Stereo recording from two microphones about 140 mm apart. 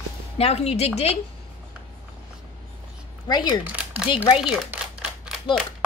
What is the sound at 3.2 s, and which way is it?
Speech, 30° left (ahead or behind).